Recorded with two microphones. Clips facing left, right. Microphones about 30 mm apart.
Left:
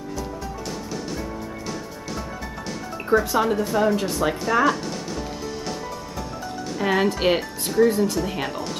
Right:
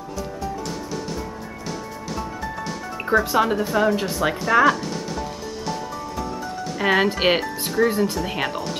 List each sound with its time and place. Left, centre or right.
3.2 s speech: centre
6.8 s speech: right; by 8.7 s centre